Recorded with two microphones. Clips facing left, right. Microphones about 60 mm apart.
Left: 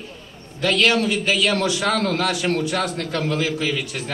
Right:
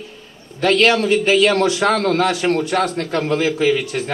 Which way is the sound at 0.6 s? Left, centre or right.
Right.